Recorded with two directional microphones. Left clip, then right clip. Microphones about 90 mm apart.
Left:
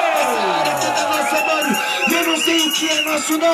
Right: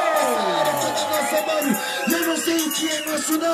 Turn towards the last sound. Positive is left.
turn(degrees=30)  # may be behind; listen again after turning